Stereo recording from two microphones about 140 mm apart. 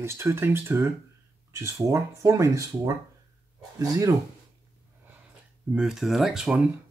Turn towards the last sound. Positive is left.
turn(degrees=-5)  # may be behind; listen again after turning